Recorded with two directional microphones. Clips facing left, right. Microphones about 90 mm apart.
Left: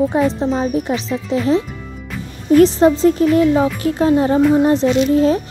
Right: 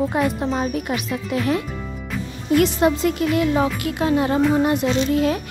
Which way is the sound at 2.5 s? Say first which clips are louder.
Left 7 dB; 35° left (ahead or behind).